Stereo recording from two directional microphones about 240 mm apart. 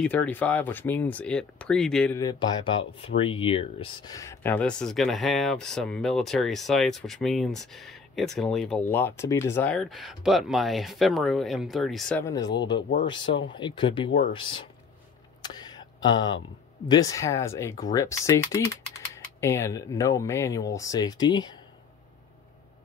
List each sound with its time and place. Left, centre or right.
0.0 s speech: centre
2.1 s speech: centre
15.4 s a sound: centre
16.8 s speech: centre